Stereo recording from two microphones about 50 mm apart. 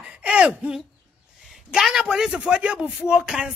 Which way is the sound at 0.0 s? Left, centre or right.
Centre.